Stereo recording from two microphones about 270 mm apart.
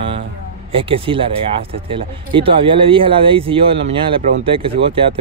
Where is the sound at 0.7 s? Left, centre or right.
Centre.